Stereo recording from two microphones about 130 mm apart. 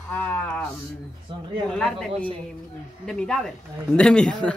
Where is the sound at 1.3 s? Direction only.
40° right (ahead or behind).